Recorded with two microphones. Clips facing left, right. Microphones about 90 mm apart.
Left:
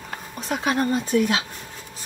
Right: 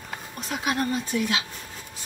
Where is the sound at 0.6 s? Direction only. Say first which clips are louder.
Left 4 dB; 40° left (ahead or behind).